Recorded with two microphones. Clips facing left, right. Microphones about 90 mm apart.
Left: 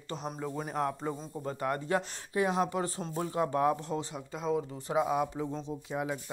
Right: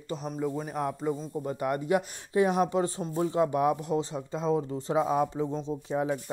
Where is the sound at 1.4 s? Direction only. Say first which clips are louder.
Right 2 dB; 20° right (ahead or behind).